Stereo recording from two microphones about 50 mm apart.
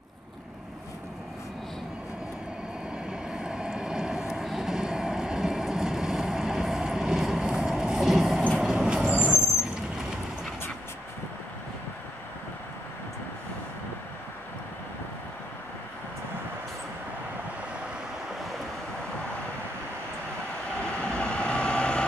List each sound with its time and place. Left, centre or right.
3.1 s vehicle: centre
8.1 s train: centre
8.5 s train: centre
20.8 s vehicle: left